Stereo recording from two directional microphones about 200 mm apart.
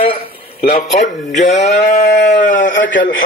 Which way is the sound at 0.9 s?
35° left (ahead or behind).